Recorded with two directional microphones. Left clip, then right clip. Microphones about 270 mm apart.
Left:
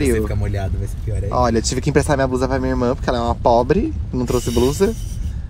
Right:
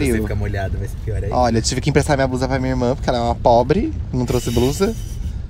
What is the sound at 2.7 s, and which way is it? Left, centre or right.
Speech, right.